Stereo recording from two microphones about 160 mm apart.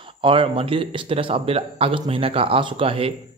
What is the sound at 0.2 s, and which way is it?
Speech, 35° right (ahead or behind).